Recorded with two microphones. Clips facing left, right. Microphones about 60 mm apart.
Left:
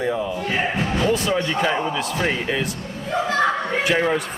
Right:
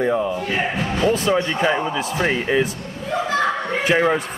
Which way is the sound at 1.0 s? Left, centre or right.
Centre.